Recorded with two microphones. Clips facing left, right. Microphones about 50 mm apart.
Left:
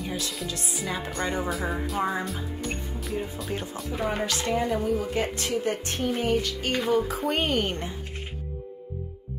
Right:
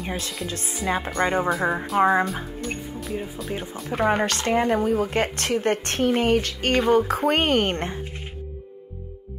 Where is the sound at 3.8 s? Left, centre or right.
Right.